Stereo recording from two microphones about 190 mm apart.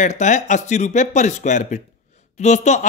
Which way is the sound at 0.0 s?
40° left (ahead or behind).